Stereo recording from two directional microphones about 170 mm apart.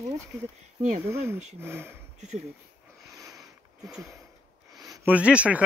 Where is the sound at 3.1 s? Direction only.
20° right (ahead or behind).